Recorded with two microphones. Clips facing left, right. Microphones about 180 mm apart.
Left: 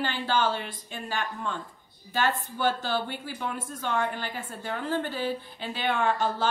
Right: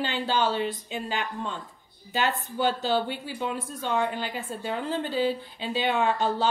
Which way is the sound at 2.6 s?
20° right (ahead or behind).